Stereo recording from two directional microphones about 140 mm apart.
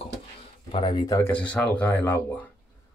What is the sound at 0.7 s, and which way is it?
Speech, 35° left (ahead or behind).